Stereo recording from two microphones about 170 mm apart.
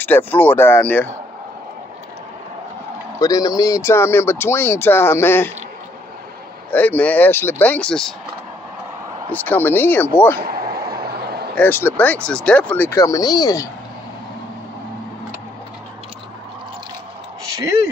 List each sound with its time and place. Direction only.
0.0 s speech: 10° left (ahead or behind)
3.2 s speech: 20° left (ahead or behind)
6.7 s speech: 10° left (ahead or behind)
9.3 s speech: 10° left (ahead or behind)
10.7 s vehicle: 65° right (ahead or behind)
11.5 s speech: 10° left (ahead or behind)